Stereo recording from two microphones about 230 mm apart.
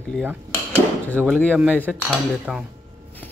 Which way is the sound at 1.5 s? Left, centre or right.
Centre.